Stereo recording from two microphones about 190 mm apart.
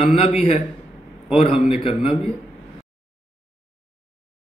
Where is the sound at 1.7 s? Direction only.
30° left (ahead or behind).